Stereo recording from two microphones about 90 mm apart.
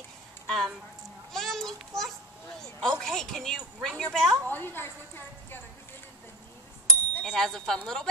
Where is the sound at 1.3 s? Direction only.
5° left (ahead or behind).